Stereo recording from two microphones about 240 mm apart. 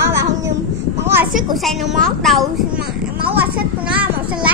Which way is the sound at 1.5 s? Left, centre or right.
Centre.